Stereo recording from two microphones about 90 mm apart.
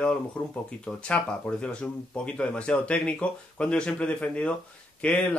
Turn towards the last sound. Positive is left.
turn(degrees=15)  # may be behind; listen again after turning